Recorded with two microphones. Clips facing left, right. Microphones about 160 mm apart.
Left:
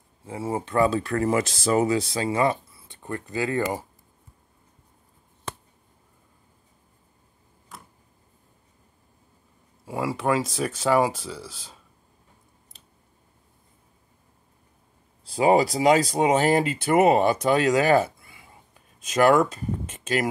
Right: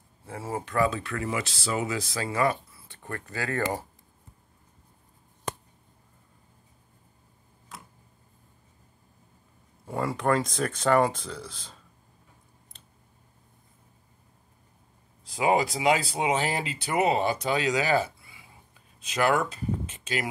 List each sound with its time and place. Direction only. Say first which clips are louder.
0.3 s speech: left 5 dB; 25° left (ahead or behind); by 2.0 s 45° left (ahead or behind)
2.0 s speech: left 4 dB; 25° left (ahead or behind)
9.8 s speech: left 1 dB; 5° left (ahead or behind)
15.2 s speech: left 5 dB; 35° left (ahead or behind)